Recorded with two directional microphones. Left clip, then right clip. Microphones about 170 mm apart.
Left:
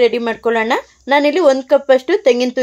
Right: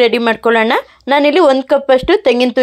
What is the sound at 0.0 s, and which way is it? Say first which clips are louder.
Speech: right 3 dB; 15° right (ahead or behind).